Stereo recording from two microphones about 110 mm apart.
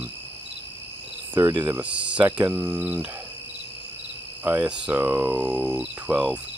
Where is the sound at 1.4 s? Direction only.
35° right (ahead or behind).